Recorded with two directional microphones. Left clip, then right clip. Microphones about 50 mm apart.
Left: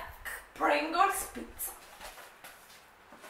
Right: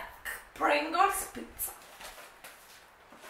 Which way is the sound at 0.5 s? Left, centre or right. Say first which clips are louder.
Right 1 dB; centre.